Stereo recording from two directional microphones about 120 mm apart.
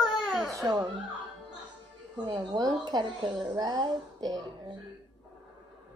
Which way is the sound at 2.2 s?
35° right (ahead or behind).